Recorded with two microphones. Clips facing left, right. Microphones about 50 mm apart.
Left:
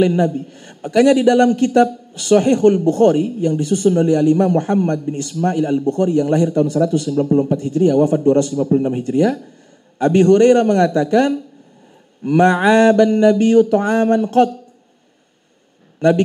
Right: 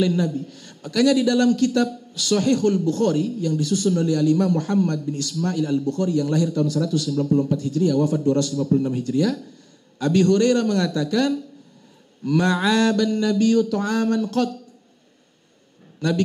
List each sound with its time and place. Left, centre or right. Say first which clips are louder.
0.0 s a man's voice: left 6 dB; left